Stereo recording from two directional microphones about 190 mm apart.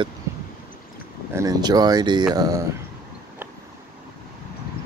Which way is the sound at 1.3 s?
20° right (ahead or behind).